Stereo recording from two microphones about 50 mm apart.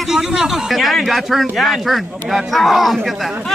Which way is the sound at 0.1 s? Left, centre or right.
Centre.